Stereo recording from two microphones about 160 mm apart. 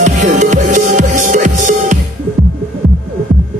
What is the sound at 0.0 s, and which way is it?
Music, 50° right (ahead or behind).